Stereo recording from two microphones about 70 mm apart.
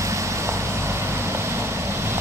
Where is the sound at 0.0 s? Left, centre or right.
Right.